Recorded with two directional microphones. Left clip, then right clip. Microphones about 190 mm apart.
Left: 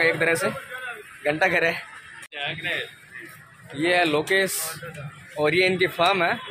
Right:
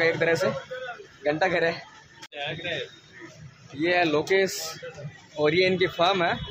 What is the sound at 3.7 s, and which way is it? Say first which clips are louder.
Speech: left 2 dB; 15° left (ahead or behind).